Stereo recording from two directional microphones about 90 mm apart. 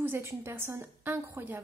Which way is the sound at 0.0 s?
30° right (ahead or behind).